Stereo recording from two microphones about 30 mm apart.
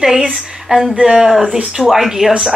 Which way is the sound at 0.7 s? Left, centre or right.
Right.